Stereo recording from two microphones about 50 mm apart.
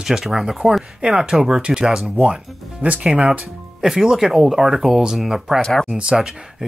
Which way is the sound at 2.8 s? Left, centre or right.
Right.